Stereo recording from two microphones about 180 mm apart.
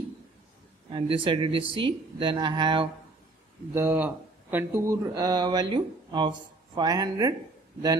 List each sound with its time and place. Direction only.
0.9 s speech: 30° right (ahead or behind)
3.7 s speech: 10° right (ahead or behind)